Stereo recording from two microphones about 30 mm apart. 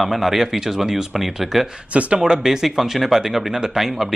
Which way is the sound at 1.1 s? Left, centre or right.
Centre.